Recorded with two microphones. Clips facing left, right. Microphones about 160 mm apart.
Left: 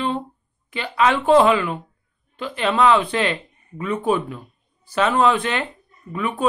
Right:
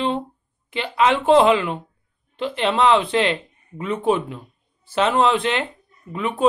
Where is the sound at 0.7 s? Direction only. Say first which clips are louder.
Right 1 dB; 25° right (ahead or behind).